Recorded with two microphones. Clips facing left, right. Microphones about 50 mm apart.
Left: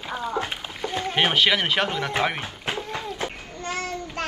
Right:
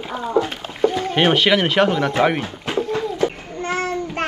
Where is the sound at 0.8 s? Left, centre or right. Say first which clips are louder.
Right 11 dB; right.